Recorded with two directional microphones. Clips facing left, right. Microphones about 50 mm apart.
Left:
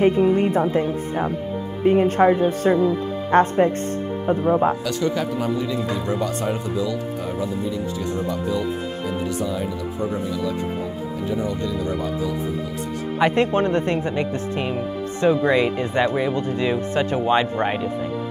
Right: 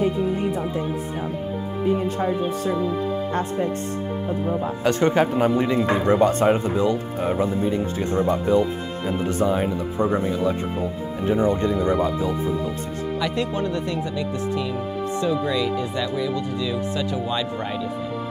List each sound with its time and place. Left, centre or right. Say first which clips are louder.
0.0 s speech: left 5 dB; left
4.8 s a man's voice: right 4 dB; right
13.2 s speech: left 8 dB; left